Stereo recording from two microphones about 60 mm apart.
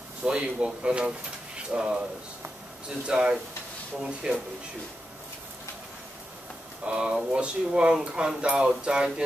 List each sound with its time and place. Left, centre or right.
0.2 s speech: centre
3.1 s speech: centre
6.8 s speech: centre